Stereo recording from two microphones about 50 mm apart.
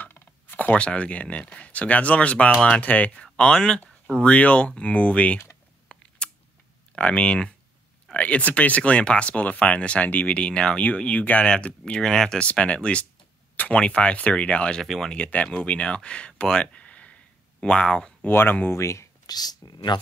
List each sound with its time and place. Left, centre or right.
0.0 s a sound: left
0.7 s speech: left
3.3 s speech: centre
5.9 s scissors: centre
7.0 s speech: left
11.4 s speech: centre
12.4 s speech: left
14.8 s speech: centre
15.0 s speech: left
18.3 s speech: left
18.8 s speech: left